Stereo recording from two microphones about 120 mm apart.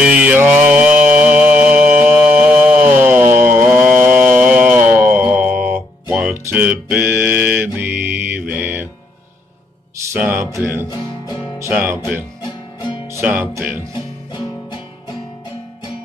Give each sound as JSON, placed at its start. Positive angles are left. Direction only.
{"t": 0.0, "sound": "mantra", "side_deg": -10}
{"t": 4.2, "sound": "music", "side_deg": -10}
{"t": 10.1, "sound": "music", "side_deg": -10}
{"t": 10.4, "sound": "music", "side_deg": -25}
{"t": 10.9, "sound": "music", "side_deg": 35}
{"t": 11.7, "sound": "speech", "side_deg": -20}
{"t": 12.4, "sound": "music", "side_deg": 35}
{"t": 13.2, "sound": "music", "side_deg": -15}